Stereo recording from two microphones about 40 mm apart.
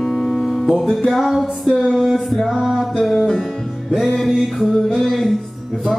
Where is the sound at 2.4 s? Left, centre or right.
Centre.